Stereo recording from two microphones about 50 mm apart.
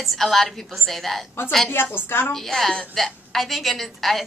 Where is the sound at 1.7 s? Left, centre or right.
Left.